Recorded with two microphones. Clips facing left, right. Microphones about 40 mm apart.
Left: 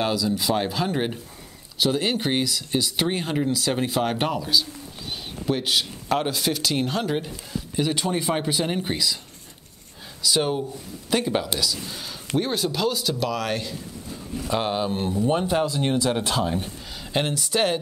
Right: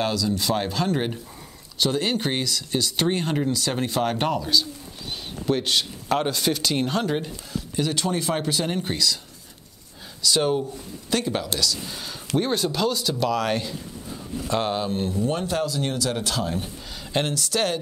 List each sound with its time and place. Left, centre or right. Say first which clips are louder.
0.0 s speech: left 1 dB; centre
10.2 s speech: right 1 dB; centre
12.4 s speech: right 1 dB; centre
14.9 s speech: left 2 dB; centre